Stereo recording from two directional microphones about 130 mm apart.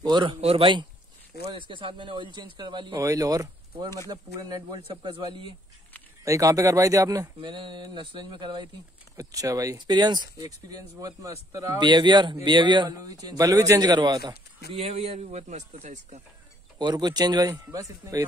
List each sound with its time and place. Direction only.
0.0 s speech: 40° right (ahead or behind)
3.0 s speech: 25° right (ahead or behind)
6.2 s speech: 25° right (ahead or behind)
7.4 s speech: 35° right (ahead or behind)
9.1 s speech: 25° right (ahead or behind)
14.8 s a man's voice: 55° right (ahead or behind)
16.7 s speech: 35° right (ahead or behind)